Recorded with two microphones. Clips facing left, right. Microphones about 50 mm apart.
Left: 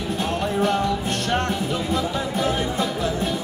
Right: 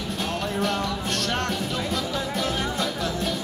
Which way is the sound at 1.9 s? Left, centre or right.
Centre.